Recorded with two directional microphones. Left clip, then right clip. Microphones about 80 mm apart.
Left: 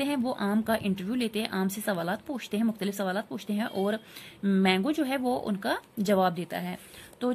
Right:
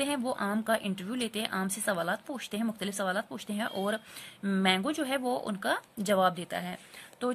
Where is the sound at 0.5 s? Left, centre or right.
Centre.